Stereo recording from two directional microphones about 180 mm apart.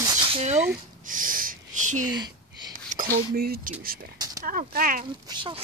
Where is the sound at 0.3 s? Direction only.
35° right (ahead or behind).